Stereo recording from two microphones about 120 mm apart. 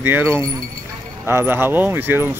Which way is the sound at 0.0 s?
15° right (ahead or behind).